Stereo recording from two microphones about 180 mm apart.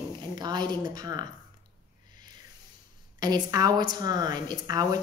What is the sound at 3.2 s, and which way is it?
Speech, 20° right (ahead or behind).